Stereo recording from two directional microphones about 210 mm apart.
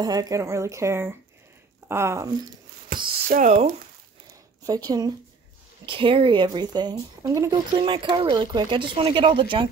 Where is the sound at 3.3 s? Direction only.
35° right (ahead or behind).